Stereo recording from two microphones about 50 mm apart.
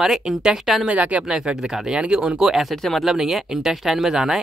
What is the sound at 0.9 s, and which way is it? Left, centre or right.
Speech, right.